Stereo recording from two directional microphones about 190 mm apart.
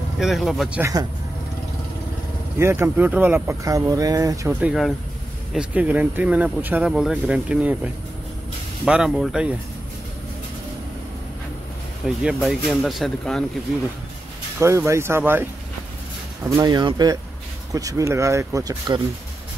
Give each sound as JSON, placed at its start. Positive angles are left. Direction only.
{"t": 0.2, "sound": "speech", "side_deg": 0}
{"t": 2.6, "sound": "speech", "side_deg": -10}
{"t": 4.6, "sound": "speech", "side_deg": -5}
{"t": 12.2, "sound": "speech", "side_deg": -5}
{"t": 14.6, "sound": "speech", "side_deg": -15}
{"t": 16.4, "sound": "speech", "side_deg": -20}